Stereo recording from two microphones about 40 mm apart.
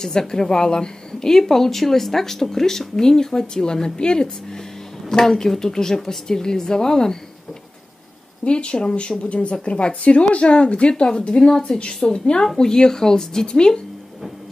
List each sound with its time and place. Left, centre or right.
0.0 s speech: centre
8.5 s a woman's voice: left